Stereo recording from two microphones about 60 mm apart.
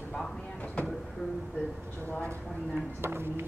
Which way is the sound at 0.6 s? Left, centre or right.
Left.